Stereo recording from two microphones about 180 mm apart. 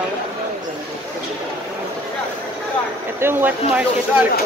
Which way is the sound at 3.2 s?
10° right (ahead or behind).